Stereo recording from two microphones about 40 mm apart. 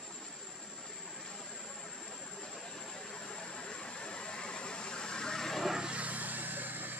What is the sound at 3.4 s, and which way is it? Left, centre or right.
Vehicle, left.